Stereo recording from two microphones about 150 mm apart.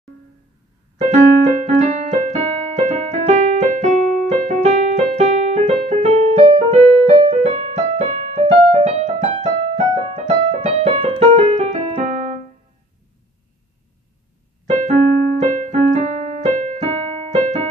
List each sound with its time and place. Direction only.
0.9 s keyboard: 50° right (ahead or behind)
14.7 s keyboard: 50° right (ahead or behind)